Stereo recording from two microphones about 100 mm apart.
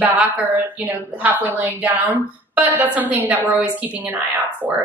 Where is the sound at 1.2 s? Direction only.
15° right (ahead or behind).